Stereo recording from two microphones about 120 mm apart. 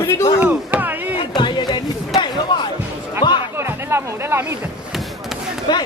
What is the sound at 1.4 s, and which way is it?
Speech, 40° left (ahead or behind).